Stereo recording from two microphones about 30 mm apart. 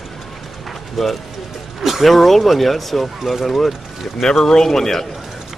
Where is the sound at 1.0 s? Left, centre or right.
Centre.